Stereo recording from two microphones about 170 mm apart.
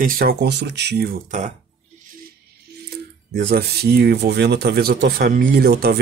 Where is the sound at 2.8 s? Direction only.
70° right (ahead or behind).